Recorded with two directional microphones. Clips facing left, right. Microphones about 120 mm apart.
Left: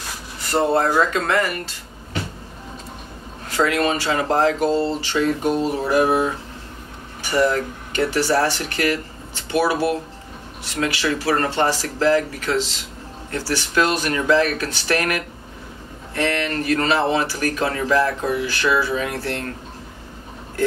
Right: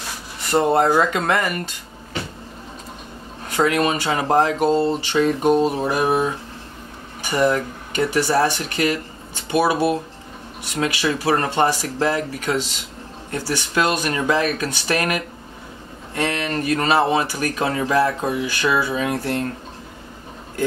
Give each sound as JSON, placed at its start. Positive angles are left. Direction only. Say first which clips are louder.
{"t": 0.5, "sound": "speech", "louder": "right 2 dB", "side_deg": -20}
{"t": 3.5, "sound": "speech", "louder": "right 1 dB", "side_deg": -20}
{"t": 7.2, "sound": "speech", "louder": "even", "side_deg": -15}